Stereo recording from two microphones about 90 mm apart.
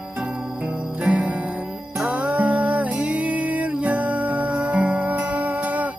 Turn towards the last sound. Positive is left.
turn(degrees=-15)  # may be behind; listen again after turning